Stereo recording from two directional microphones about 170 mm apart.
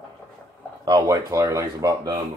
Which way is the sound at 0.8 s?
20° right (ahead or behind).